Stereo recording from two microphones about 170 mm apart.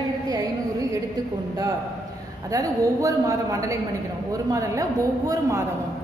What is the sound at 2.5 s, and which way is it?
A woman's voice, 20° right (ahead or behind).